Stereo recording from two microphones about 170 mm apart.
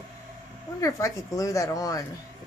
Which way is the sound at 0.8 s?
20° left (ahead or behind).